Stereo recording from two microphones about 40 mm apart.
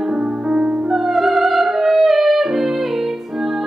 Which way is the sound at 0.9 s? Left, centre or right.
Centre.